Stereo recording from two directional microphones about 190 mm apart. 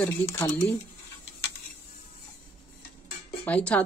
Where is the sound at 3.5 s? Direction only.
5° left (ahead or behind).